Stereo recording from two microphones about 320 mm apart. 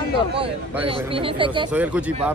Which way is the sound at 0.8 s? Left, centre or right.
Centre.